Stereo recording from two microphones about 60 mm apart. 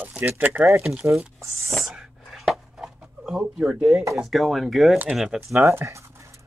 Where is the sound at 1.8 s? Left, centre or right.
Centre.